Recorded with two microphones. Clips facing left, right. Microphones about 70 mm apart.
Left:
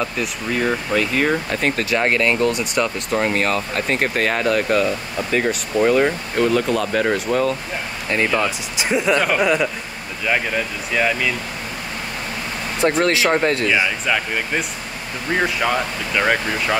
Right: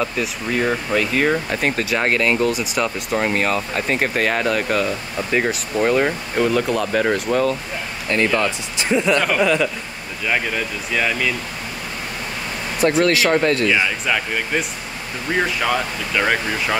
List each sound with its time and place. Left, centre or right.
0.0 s speech: centre
10.9 s speech: centre
13.0 s speech: left
13.8 s speech: centre